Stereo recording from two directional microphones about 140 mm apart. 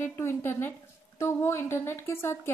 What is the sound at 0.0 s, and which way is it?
A woman's voice, 20° left (ahead or behind).